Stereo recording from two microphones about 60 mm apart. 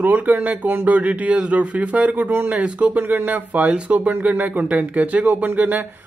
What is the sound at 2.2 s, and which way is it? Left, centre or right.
Speech, right.